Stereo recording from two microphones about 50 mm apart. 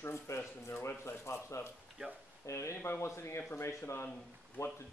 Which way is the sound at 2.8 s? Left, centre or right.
Left.